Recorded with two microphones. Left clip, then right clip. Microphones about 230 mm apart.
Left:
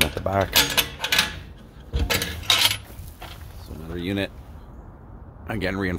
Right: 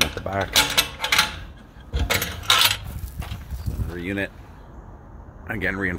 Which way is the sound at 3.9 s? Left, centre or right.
Centre.